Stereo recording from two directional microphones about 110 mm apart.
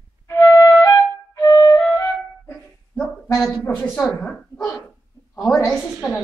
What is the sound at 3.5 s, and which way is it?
A woman's voice, 15° left (ahead or behind).